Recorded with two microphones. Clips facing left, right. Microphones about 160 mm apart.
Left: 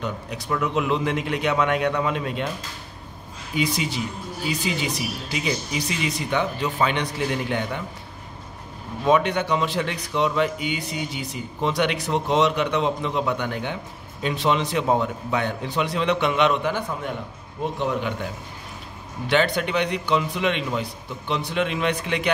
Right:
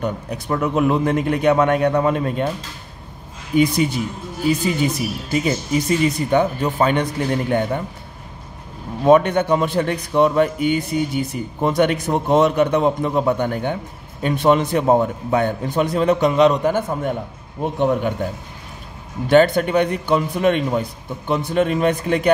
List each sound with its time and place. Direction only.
0.0 s a man's voice: 45° right (ahead or behind)
3.5 s a man's voice: 55° right (ahead or behind)
9.0 s a man's voice: 50° right (ahead or behind)